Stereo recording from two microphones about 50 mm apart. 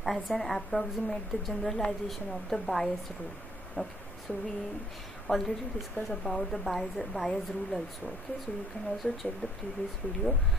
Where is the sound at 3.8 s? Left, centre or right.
Left.